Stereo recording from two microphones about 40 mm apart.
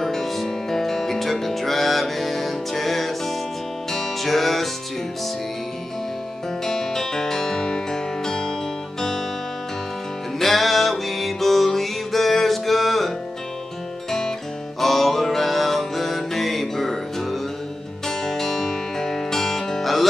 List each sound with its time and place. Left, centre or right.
0.0 s music: centre
6.6 s music: centre
10.4 s music: centre
14.8 s music: centre